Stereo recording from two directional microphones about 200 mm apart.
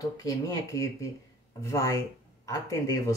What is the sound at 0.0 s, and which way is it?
Speech, 20° left (ahead or behind).